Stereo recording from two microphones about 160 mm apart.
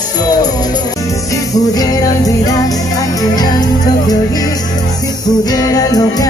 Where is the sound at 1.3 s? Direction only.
20° left (ahead or behind).